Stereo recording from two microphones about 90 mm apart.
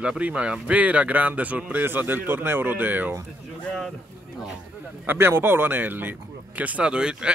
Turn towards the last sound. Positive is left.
turn(degrees=-10)  # may be behind; listen again after turning